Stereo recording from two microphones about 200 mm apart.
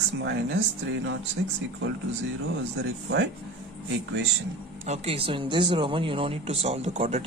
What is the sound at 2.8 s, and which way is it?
Speech, 55° right (ahead or behind).